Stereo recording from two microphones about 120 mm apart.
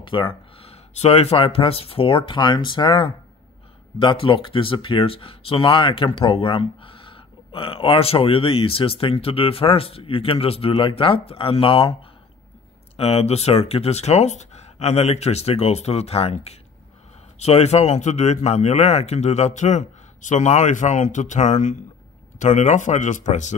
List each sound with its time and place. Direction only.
0.0 s speech: 45° left (ahead or behind)
12.9 s a man's voice: 55° left (ahead or behind); by 23.5 s 85° left